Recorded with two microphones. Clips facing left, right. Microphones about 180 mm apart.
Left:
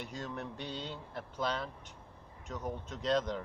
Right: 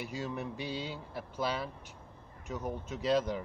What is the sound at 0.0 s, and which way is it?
Speech, 5° right (ahead or behind).